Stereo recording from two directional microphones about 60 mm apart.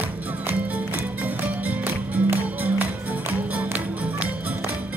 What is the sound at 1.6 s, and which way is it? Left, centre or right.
Music, right.